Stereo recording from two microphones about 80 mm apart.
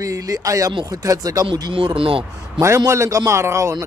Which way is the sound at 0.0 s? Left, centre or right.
Right.